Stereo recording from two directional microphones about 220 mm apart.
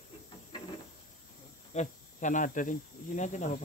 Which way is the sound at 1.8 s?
35° left (ahead or behind).